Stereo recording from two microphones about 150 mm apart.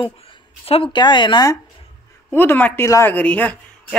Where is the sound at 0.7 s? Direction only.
35° left (ahead or behind).